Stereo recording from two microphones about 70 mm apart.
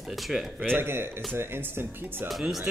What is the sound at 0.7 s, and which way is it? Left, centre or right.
Speech, right.